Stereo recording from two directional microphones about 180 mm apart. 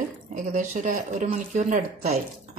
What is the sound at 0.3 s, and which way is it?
Speech, 40° right (ahead or behind).